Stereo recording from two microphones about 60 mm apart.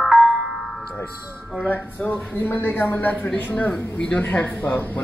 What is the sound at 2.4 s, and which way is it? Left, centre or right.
Speech, left.